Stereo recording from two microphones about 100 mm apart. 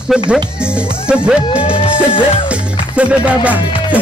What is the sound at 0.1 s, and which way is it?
Music, 10° right (ahead or behind).